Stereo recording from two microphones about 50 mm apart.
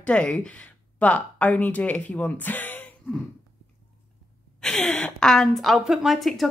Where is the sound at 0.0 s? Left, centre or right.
Left.